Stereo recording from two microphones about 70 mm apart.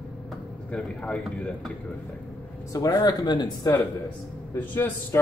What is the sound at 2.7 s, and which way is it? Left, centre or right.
Speech, left.